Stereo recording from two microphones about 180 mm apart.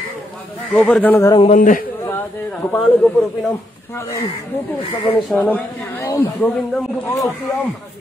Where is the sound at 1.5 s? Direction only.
45° left (ahead or behind).